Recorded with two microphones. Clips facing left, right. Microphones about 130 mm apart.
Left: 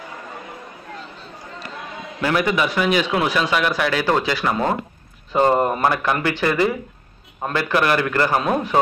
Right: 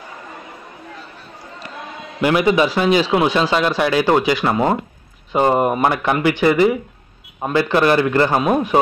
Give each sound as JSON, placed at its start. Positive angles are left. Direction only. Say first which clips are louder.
{"t": 2.2, "sound": "speech", "louder": "right 5 dB", "side_deg": -20}